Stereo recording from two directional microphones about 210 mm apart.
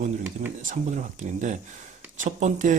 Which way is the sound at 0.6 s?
35° right (ahead or behind).